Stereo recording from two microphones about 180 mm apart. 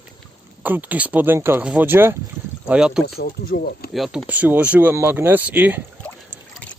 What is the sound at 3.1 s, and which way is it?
Speech, 60° left (ahead or behind).